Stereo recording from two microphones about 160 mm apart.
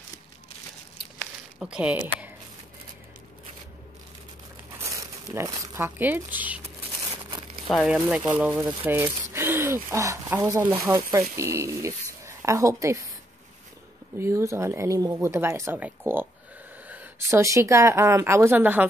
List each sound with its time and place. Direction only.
1.2 s a sound: 5° right (ahead or behind)
4.7 s speech: 20° right (ahead or behind)
7.6 s speech: centre (ahead or behind); by 13.0 s 20° right (ahead or behind)
14.1 s a woman's voice: 15° right (ahead or behind)